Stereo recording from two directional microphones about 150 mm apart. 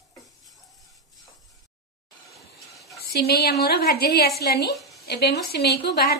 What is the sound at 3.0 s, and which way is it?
A woman's voice, 90° left.